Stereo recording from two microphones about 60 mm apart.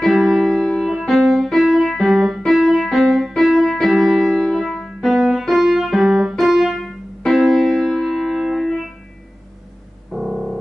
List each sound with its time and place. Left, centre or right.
0.0 s music: centre
2.1 s keyboard: centre
2.4 s music: centre
10.1 s music: centre